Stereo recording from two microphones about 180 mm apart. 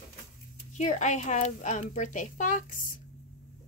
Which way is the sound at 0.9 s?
40° left (ahead or behind).